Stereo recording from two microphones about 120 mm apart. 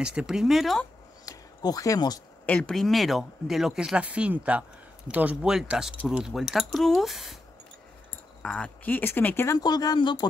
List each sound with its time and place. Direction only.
0.0 s speech: 5° right (ahead or behind)
1.2 s a sound: 30° left (ahead or behind)
2.4 s speech: 10° left (ahead or behind)
8.4 s speech: 10° left (ahead or behind)
9.6 s speech: 35° left (ahead or behind)